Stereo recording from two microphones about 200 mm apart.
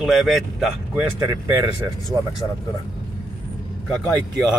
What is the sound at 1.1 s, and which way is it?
Speech, 15° right (ahead or behind).